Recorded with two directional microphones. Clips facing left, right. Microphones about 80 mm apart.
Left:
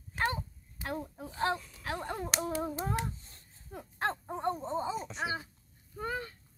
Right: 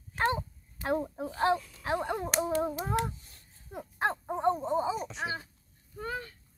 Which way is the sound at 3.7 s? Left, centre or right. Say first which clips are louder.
Right 3 dB; centre.